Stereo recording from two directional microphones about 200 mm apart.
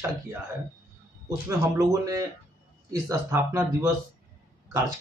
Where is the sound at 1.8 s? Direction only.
15° right (ahead or behind).